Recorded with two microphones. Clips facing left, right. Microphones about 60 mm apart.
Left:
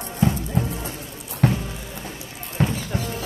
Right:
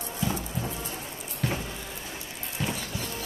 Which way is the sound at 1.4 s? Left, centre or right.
Left.